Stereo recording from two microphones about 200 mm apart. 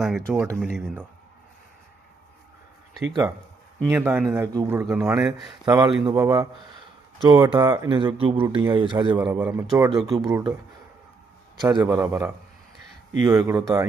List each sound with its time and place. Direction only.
0.0 s speech: centre (ahead or behind)
3.9 s speech: 10° right (ahead or behind)
5.5 s speech: 20° right (ahead or behind)
9.3 s speech: 5° right (ahead or behind)
10.2 s speech: 20° right (ahead or behind)
11.6 s speech: 20° right (ahead or behind)